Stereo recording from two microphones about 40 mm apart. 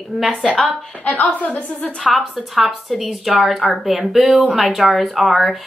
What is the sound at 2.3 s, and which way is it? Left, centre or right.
Speech, centre.